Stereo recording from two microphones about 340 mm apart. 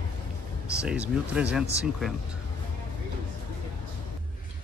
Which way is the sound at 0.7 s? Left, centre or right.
Centre.